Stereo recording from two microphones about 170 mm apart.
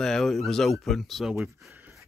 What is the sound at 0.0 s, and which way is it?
Speech, centre (ahead or behind).